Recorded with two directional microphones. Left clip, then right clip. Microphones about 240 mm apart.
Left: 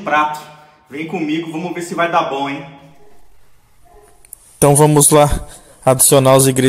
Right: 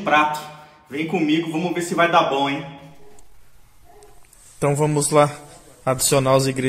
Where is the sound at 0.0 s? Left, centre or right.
Centre.